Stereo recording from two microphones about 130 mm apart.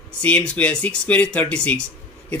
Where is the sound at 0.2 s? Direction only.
10° left (ahead or behind).